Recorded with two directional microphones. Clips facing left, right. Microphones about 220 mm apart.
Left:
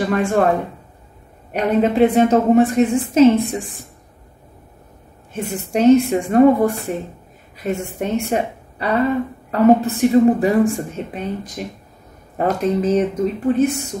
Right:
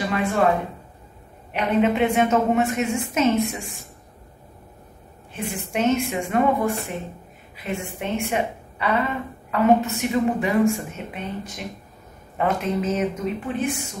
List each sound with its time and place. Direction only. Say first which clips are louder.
0.0 s speech: left 6 dB; 45° left (ahead or behind)
1.5 s speech: left 3 dB; 35° left (ahead or behind)
5.3 s a woman's voice: left 6 dB; 40° left (ahead or behind)
12.4 s speech: left 5 dB; 40° left (ahead or behind)